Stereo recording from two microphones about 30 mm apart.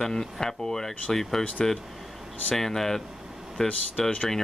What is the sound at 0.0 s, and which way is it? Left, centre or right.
Speech, centre.